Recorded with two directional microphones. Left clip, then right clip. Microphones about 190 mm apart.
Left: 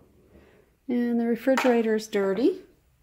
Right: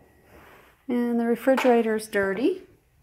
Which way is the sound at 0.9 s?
20° left (ahead or behind).